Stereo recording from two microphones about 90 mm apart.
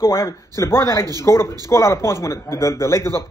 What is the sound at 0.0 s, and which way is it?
Speech, 30° left (ahead or behind).